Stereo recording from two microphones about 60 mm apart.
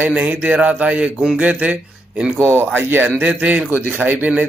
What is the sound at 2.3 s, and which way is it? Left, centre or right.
Speech, right.